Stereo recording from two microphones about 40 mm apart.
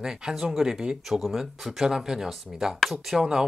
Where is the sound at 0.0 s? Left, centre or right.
Centre.